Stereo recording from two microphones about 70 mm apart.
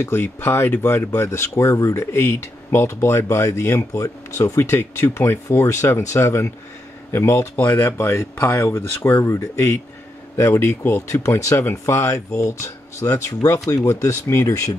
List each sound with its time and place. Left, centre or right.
0.0 s speech: left
11.2 s speech: left